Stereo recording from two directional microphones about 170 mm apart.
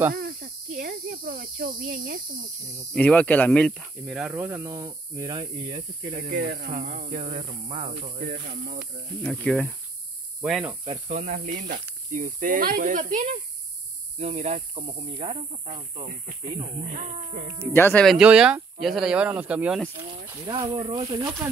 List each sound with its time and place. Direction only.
0.1 s cricket: 60° right (ahead or behind)
2.9 s speech: 10° left (ahead or behind); by 5.8 s 25° right (ahead or behind)
6.1 s speech: 55° right (ahead or behind)
7.1 s speech: 40° right (ahead or behind)
8.2 s speech: 65° right (ahead or behind)
9.2 s speech: 5° left (ahead or behind)
10.4 s speech: 5° right (ahead or behind)
11.1 s speech: 45° right (ahead or behind)
16.1 s speech: 50° right (ahead or behind)
17.7 s speech: 15° left (ahead or behind)
18.0 s speech: 5° right (ahead or behind)
20.4 s speech: 25° right (ahead or behind)